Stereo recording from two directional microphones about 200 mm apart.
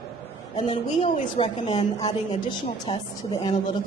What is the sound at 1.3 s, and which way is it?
A woman's voice, 25° left (ahead or behind).